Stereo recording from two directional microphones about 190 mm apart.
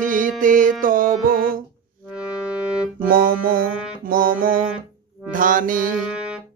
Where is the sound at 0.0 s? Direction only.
45° right (ahead or behind).